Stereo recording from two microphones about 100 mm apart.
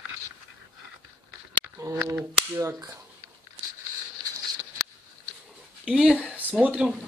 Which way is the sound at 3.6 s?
75° right (ahead or behind).